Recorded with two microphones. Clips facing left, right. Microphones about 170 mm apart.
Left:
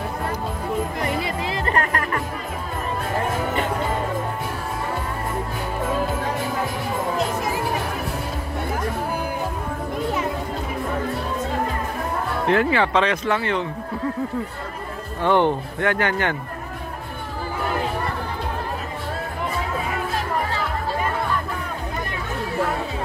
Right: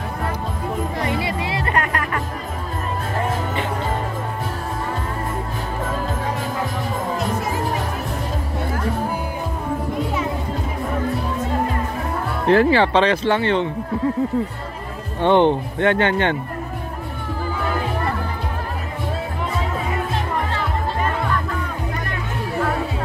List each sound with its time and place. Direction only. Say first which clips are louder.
1.6 s music: left 1 dB; 40° left (ahead or behind)
12.4 s speech: right 5 dB; 35° right (ahead or behind)
15.2 s speech: right 3 dB; 20° right (ahead or behind)